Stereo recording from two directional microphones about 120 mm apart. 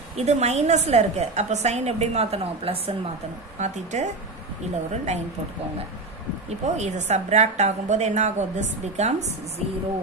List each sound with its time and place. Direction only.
0.2 s a woman's voice: 65° right (ahead or behind)
3.5 s a woman's voice: 75° right (ahead or behind)
6.6 s a woman's voice: 70° right (ahead or behind)